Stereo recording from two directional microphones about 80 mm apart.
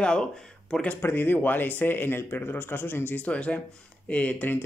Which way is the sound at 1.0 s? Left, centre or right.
Left.